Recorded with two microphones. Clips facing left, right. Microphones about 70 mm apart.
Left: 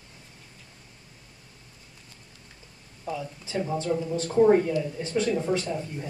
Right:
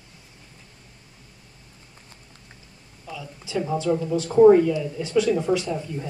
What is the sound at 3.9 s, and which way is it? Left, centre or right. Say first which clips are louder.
Speech: right 5 dB; centre.